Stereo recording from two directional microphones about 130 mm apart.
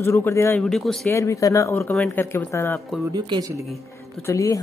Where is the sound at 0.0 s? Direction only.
20° left (ahead or behind).